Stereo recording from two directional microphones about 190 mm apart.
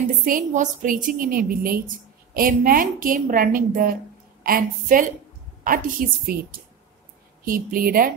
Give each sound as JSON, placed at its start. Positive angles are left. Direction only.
{"t": 0.2, "sound": "a woman's voice", "side_deg": -45}